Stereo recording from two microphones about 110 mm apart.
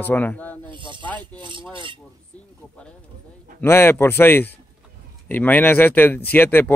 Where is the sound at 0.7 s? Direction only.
45° right (ahead or behind).